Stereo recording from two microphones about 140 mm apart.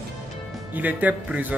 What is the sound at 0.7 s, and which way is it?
Speech, 10° right (ahead or behind).